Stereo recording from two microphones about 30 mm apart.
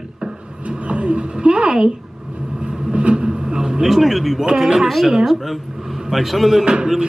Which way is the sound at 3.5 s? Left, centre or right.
Right.